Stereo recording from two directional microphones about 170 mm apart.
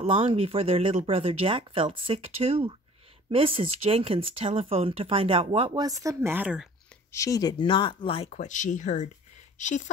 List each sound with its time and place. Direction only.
0.0 s speech: 30° right (ahead or behind); by 6.7 s 5° right (ahead or behind)
7.1 s speech: 20° left (ahead or behind); by 9.8 s 45° left (ahead or behind)